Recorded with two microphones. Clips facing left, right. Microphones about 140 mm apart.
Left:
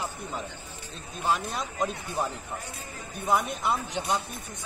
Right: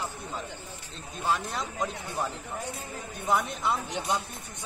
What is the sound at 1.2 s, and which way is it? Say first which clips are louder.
A woman's voice: left 1 dB; 20° left (ahead or behind).